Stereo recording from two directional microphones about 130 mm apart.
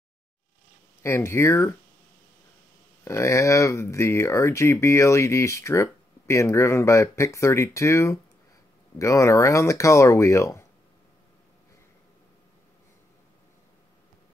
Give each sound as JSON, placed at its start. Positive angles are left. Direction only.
{"t": 1.0, "sound": "speech", "side_deg": 20}
{"t": 3.0, "sound": "speech", "side_deg": 20}